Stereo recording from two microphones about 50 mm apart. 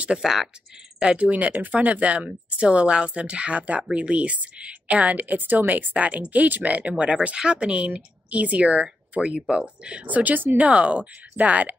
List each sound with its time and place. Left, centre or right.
0.2 s speech: centre
1.1 s a woman's voice: right
10.6 s a woman's voice: right